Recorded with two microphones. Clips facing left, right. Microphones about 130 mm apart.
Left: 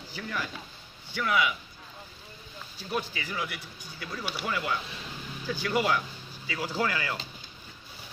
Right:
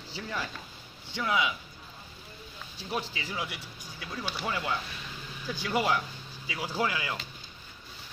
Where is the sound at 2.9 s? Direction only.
25° right (ahead or behind).